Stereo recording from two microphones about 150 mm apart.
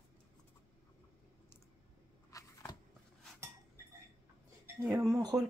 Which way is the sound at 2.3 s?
20° left (ahead or behind).